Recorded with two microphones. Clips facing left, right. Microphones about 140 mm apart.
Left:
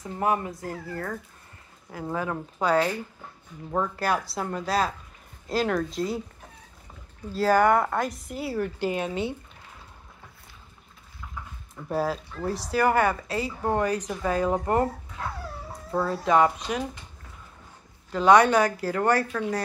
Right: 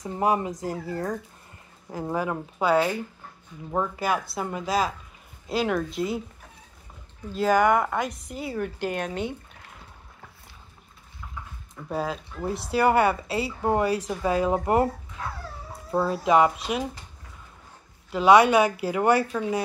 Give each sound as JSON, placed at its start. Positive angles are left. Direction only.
{"t": 0.1, "sound": "speech", "side_deg": -20}
{"t": 2.6, "sound": "a woman's voice", "side_deg": -5}
{"t": 7.4, "sound": "a woman's voice", "side_deg": 0}
{"t": 11.7, "sound": "a woman's voice", "side_deg": 5}
{"t": 12.4, "sound": "speech", "side_deg": -25}
{"t": 13.1, "sound": "speech", "side_deg": -10}
{"t": 15.9, "sound": "speech", "side_deg": -15}
{"t": 18.1, "sound": "a woman's voice", "side_deg": -5}